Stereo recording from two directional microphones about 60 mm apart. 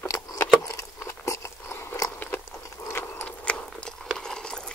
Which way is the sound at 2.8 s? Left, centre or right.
Left.